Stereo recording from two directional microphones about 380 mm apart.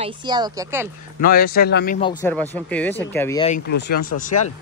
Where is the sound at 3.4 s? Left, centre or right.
Left.